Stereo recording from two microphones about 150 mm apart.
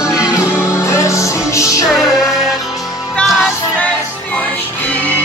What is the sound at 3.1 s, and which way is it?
Music, 10° left (ahead or behind).